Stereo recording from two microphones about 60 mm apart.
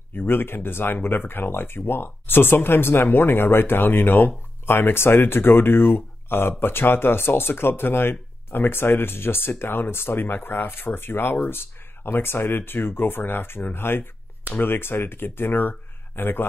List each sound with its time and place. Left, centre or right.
0.1 s speech: left